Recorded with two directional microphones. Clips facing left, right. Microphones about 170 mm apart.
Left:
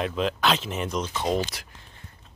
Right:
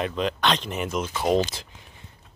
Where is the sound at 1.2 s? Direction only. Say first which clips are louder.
Right 6 dB; 20° right (ahead or behind).